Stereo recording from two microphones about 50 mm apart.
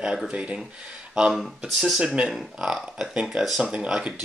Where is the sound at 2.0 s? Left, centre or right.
Right.